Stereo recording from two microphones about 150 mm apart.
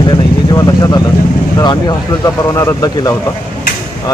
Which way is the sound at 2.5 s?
20° left (ahead or behind).